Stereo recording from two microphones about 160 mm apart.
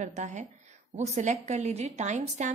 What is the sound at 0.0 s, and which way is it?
A woman's voice, 50° right (ahead or behind).